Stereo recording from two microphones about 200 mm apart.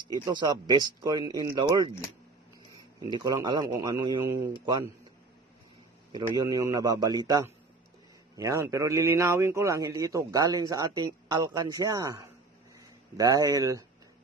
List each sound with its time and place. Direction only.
0.1 s a man's voice: 20° right (ahead or behind)
3.0 s a man's voice: 20° right (ahead or behind)
6.1 s a man's voice: 20° right (ahead or behind)